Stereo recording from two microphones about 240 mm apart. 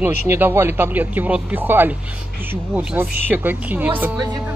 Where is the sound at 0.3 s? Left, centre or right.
Centre.